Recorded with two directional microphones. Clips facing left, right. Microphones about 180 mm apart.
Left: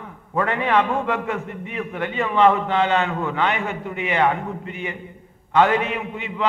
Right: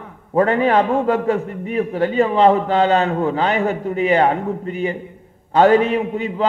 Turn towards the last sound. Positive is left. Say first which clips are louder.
# right 5 dB
turn(degrees=-35)  # may be behind; listen again after turning